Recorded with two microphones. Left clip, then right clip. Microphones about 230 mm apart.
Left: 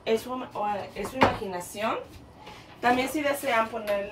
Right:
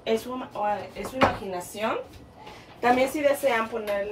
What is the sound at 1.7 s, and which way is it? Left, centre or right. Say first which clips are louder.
Speech: right 1 dB; left.